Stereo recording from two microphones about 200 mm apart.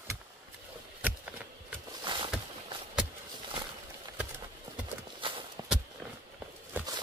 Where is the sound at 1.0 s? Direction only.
5° right (ahead or behind).